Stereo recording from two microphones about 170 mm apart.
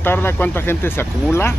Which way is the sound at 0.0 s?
15° left (ahead or behind).